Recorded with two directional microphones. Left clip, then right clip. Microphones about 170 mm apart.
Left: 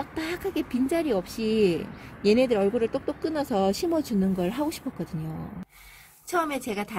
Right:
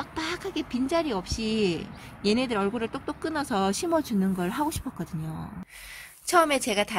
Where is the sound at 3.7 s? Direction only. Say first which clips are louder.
Even; 90° right.